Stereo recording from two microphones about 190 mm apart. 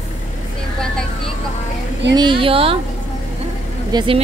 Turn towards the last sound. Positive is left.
turn(degrees=-20)  # may be behind; listen again after turning